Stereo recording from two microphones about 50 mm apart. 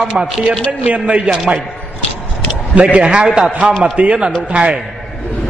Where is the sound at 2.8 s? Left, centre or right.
Right.